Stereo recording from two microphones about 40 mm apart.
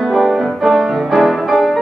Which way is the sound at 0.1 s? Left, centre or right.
Centre.